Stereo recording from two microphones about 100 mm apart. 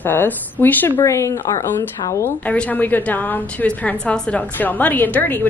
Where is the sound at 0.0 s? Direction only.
20° left (ahead or behind).